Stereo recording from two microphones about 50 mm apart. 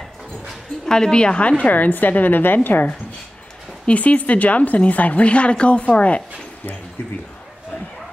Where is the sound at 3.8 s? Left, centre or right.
Left.